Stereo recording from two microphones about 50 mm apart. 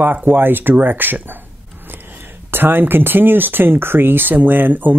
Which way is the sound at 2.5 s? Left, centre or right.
Right.